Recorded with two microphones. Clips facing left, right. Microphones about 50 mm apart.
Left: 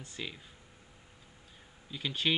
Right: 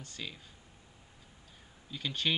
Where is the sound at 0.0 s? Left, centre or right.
Centre.